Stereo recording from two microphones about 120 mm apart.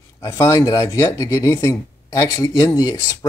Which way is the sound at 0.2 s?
30° left (ahead or behind).